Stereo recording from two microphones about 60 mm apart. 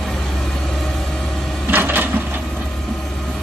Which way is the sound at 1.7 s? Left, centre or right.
Right.